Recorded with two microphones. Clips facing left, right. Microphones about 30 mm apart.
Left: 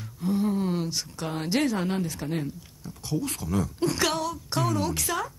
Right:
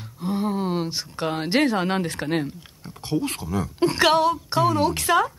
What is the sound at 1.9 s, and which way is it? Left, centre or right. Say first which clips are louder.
A woman's voice: right 5 dB; right.